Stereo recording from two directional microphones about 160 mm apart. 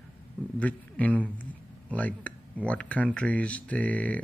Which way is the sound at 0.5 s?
10° left (ahead or behind).